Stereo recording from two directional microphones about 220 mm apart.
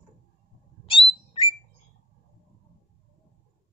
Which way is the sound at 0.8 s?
25° left (ahead or behind).